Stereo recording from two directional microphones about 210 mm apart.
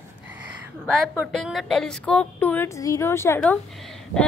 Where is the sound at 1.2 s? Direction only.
Centre (ahead or behind).